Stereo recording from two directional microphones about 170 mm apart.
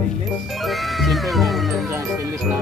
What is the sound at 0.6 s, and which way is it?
Cat, centre (ahead or behind).